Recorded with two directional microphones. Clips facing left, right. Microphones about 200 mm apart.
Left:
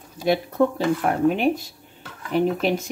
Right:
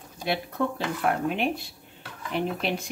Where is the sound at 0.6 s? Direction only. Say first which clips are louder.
Left 6 dB; 40° left (ahead or behind).